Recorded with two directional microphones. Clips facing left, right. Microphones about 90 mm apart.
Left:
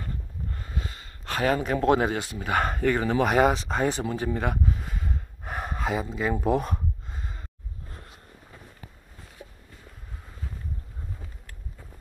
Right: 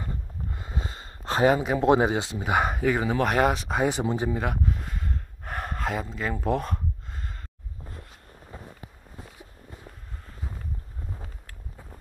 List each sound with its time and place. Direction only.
0.0 s speech: 20° right (ahead or behind)
4.0 s speech: 20° right (ahead or behind)
4.3 s a sound: centre (ahead or behind)